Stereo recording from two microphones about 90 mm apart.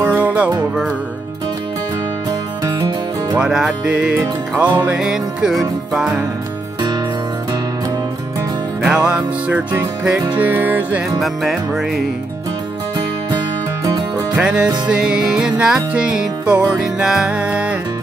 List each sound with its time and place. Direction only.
0.0 s music: 15° right (ahead or behind)
3.3 s music: 5° right (ahead or behind)
8.8 s music: 10° right (ahead or behind)
11.1 s music: centre (ahead or behind)
13.8 s music: 40° right (ahead or behind)
14.3 s music: 10° right (ahead or behind)